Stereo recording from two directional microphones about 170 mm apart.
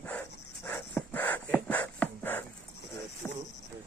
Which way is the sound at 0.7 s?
10° left (ahead or behind).